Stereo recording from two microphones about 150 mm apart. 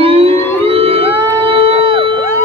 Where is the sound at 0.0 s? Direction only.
40° right (ahead or behind).